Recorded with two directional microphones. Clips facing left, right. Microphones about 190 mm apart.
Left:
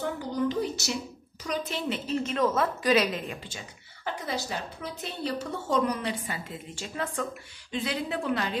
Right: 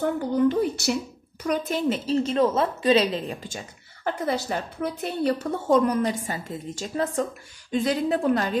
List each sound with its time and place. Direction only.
0.5 s a woman's voice: 55° right (ahead or behind)
1.9 s a woman's voice: 35° right (ahead or behind)
3.4 s a woman's voice: 50° right (ahead or behind)